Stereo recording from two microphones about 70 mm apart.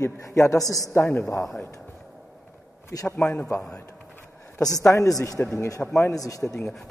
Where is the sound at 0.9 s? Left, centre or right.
Left.